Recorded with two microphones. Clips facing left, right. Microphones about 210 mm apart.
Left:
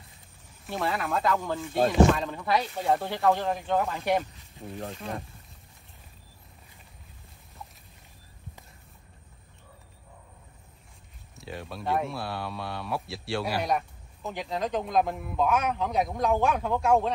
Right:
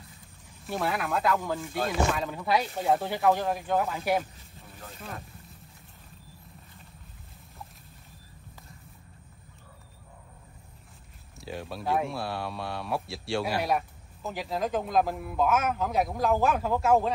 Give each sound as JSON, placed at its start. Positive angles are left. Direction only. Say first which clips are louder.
{"t": 0.7, "sound": "speech", "louder": "even", "side_deg": 0}
{"t": 4.6, "sound": "speech", "louder": "left 14 dB", "side_deg": 45}
{"t": 11.3, "sound": "speech", "louder": "right 2 dB", "side_deg": 0}